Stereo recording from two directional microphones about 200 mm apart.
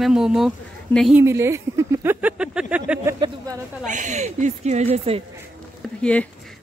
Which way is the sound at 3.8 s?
40° right (ahead or behind).